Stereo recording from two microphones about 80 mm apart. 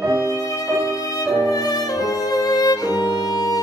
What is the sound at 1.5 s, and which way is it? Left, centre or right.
Music, left.